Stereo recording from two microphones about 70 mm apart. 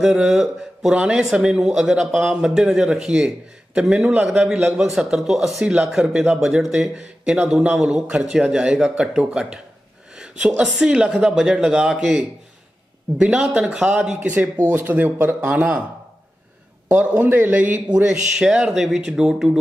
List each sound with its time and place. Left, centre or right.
0.0 s a man's voice: centre; by 15.8 s right
16.9 s speech: right
17.9 s a man's voice: centre